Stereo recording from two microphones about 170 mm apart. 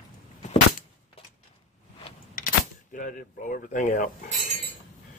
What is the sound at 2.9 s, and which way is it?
Speech, 55° left (ahead or behind).